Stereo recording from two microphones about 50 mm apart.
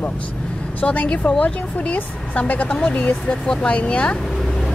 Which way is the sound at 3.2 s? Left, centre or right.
Centre.